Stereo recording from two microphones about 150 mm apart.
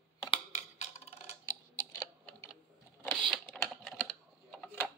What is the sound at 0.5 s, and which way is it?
Wood block, 45° left (ahead or behind).